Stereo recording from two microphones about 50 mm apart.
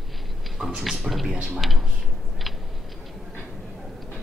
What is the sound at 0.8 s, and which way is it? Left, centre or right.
A man's voice, centre.